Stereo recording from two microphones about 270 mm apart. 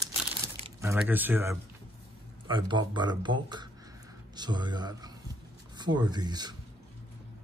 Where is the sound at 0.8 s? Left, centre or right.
Centre.